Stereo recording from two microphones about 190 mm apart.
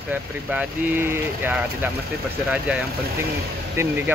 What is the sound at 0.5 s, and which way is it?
Speech, 10° right (ahead or behind).